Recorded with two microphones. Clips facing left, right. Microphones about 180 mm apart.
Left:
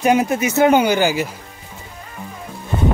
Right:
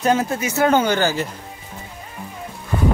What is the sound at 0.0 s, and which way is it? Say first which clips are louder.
Speech: left 3 dB; 15° left (ahead or behind).